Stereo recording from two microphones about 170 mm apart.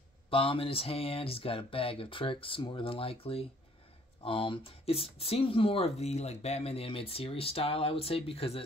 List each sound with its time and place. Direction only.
0.3 s speech: 30° left (ahead or behind)